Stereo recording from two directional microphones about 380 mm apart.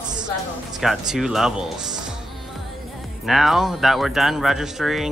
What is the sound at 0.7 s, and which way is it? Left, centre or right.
Speech, centre.